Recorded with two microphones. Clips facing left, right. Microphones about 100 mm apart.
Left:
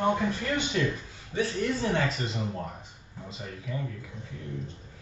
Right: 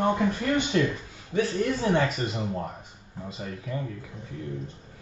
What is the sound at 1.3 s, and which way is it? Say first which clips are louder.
Speech: right 3 dB; 50° right (ahead or behind).